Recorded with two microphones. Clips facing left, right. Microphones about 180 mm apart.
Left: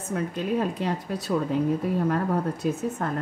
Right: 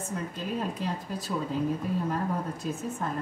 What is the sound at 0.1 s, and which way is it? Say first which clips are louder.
Speech: left 8 dB; 70° left (ahead or behind).